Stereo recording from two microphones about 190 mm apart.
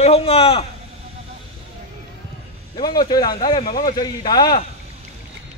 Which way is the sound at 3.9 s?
20° left (ahead or behind).